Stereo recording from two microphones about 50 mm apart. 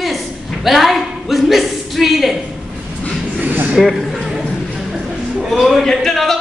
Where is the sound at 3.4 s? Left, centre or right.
Right.